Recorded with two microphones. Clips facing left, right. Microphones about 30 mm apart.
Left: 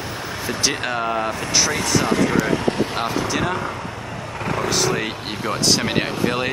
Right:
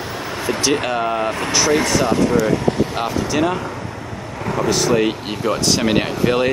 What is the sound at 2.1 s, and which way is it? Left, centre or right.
Speech, left.